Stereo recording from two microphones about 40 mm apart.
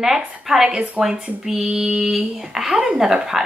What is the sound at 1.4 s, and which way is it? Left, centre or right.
Speech, centre.